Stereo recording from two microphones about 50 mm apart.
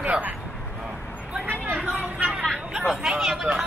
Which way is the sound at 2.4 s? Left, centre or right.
Centre.